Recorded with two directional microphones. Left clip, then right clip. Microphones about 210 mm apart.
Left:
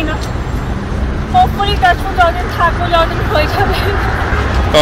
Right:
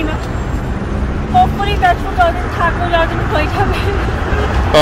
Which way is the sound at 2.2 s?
10° left (ahead or behind).